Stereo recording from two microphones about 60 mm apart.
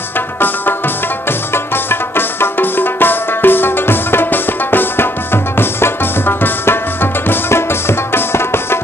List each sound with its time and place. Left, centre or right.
1.5 s music: left